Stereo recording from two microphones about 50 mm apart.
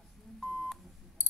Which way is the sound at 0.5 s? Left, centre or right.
Centre.